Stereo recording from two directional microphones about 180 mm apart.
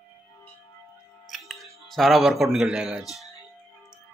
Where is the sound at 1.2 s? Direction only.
Centre (ahead or behind).